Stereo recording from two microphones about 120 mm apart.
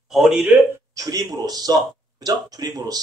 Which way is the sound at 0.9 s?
30° right (ahead or behind).